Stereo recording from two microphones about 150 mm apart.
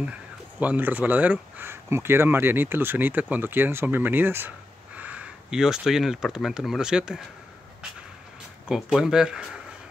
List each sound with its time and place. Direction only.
0.6 s speech: 10° right (ahead or behind)
8.6 s speech: 5° right (ahead or behind)